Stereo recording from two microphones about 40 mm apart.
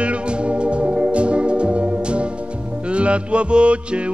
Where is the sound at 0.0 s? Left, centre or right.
Right.